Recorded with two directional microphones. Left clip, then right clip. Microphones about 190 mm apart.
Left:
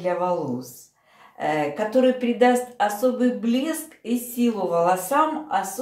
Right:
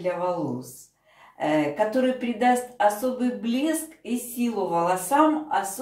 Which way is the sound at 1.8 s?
35° left (ahead or behind).